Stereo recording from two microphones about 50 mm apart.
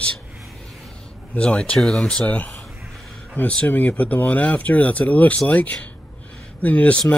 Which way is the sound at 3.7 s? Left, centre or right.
Left.